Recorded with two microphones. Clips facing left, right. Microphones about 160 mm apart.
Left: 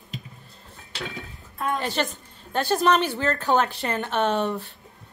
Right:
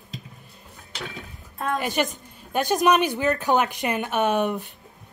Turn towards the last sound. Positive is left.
turn(degrees=-15)  # may be behind; listen again after turning